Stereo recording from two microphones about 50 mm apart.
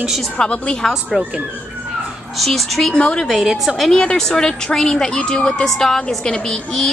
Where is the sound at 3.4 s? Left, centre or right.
Centre.